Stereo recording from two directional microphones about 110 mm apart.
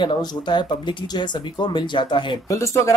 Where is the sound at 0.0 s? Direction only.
45° left (ahead or behind).